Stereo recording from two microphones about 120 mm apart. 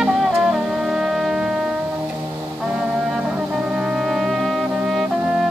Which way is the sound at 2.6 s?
10° right (ahead or behind).